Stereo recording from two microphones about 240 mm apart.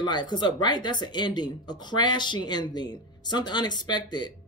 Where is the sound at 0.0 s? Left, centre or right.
Centre.